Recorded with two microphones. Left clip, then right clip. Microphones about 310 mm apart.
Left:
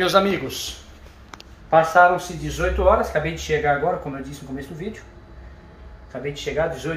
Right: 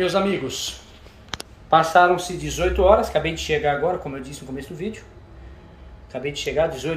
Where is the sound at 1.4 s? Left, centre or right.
Centre.